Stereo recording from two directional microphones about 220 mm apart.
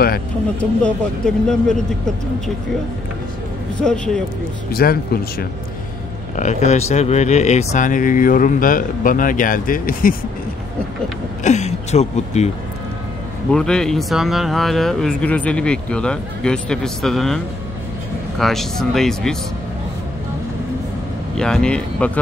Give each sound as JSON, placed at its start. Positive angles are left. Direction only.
{"t": 0.6, "sound": "speech", "side_deg": 5}
{"t": 3.8, "sound": "speech", "side_deg": 5}
{"t": 4.6, "sound": "speech", "side_deg": 45}
{"t": 6.3, "sound": "speech", "side_deg": 30}
{"t": 11.4, "sound": "a sound", "side_deg": 30}
{"t": 13.5, "sound": "speech", "side_deg": 5}
{"t": 18.4, "sound": "speech", "side_deg": 0}
{"t": 21.4, "sound": "speech", "side_deg": 5}